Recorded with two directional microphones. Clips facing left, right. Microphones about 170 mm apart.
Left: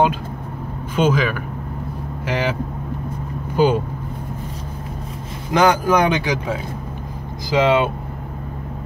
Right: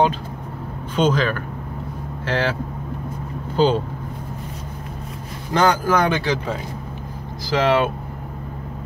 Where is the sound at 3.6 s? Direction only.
10° left (ahead or behind).